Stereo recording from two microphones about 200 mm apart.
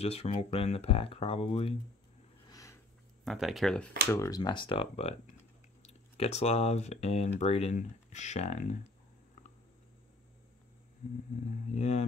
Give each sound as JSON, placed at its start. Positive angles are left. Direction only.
{"t": 0.0, "sound": "speech", "side_deg": 30}
{"t": 2.4, "sound": "a sound", "side_deg": 15}
{"t": 3.3, "sound": "speech", "side_deg": 0}
{"t": 4.1, "sound": "speech", "side_deg": 15}
{"t": 11.7, "sound": "speech", "side_deg": 35}